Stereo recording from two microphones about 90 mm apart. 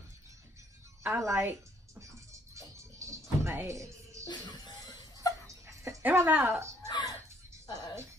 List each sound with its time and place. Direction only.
1.0 s a woman's voice: 30° right (ahead or behind)
2.5 s a sound: 35° right (ahead or behind)
3.6 s music: 35° right (ahead or behind)
4.3 s music: 50° left (ahead or behind)
5.5 s dog: 35° right (ahead or behind)
6.0 s speech: 20° right (ahead or behind)
6.9 s music: 55° left (ahead or behind)